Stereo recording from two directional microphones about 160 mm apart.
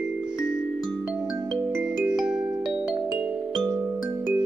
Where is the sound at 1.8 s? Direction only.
5° right (ahead or behind).